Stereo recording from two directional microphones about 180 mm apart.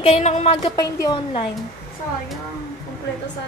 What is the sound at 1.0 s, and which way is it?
Speech, 25° left (ahead or behind).